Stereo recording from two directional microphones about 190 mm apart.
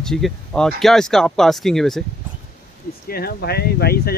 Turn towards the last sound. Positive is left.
turn(degrees=55)  # may be behind; listen again after turning